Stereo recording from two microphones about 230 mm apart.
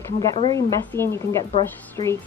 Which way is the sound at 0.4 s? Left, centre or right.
Centre.